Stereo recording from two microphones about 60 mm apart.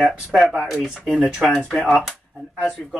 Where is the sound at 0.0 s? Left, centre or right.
Centre.